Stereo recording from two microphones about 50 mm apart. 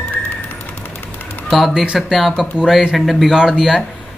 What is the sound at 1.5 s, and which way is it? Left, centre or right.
Speech, centre.